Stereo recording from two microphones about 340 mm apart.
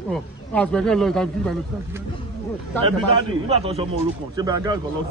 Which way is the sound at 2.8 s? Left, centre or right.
Centre.